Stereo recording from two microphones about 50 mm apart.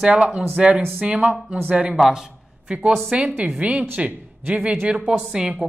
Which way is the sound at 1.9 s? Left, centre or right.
Centre.